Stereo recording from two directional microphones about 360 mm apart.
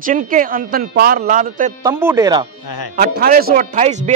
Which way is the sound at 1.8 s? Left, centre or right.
Centre.